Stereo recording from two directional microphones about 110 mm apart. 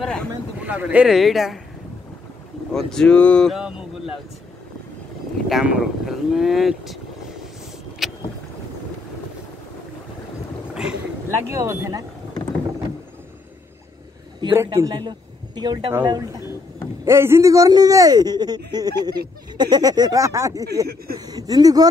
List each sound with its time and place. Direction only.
0.0 s speech: 5° left (ahead or behind)
0.7 s speech: 10° right (ahead or behind)
2.7 s speech: 5° left (ahead or behind)
5.5 s speech: 5° right (ahead or behind)
8.0 s boat: 5° right (ahead or behind)
10.7 s a sound: 5° right (ahead or behind)
11.2 s speech: 25° right (ahead or behind)
14.5 s speech: 25° right (ahead or behind)
14.9 s speech: 40° right (ahead or behind)
16.1 s a man's voice: 30° right (ahead or behind)